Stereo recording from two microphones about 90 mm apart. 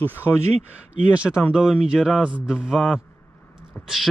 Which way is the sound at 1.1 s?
10° right (ahead or behind).